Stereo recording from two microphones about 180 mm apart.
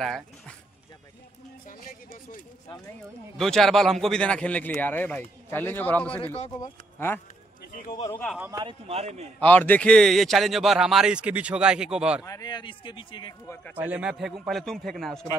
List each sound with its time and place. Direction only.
0.0 s speech: centre (ahead or behind)
1.7 s a sound: 50° left (ahead or behind)
3.3 s a man's voice: centre (ahead or behind)
8.5 s speech: 25° right (ahead or behind)
9.4 s speech: 10° left (ahead or behind)
12.3 s speech: 20° left (ahead or behind)
13.7 s speech: 10° right (ahead or behind)